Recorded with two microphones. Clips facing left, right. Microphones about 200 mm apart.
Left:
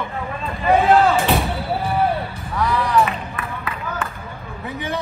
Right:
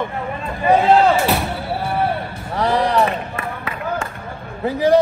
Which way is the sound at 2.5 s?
30° right (ahead or behind).